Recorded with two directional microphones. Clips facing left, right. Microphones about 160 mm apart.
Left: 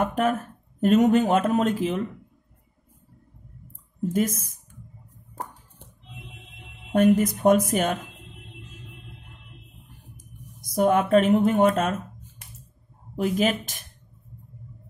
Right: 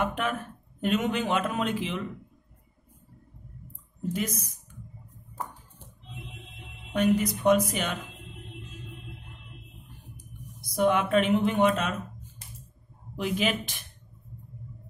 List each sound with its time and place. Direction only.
0.0 s speech: 40° left (ahead or behind)
4.1 s speech: 50° left (ahead or behind)
6.9 s speech: 50° left (ahead or behind)
10.1 s speech: 45° left (ahead or behind)
13.1 s speech: 45° left (ahead or behind)